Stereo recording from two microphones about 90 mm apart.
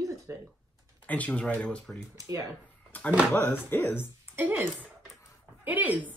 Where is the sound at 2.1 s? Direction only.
40° right (ahead or behind).